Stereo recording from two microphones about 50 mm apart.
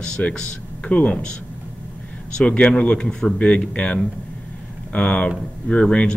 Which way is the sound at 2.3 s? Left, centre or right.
Centre.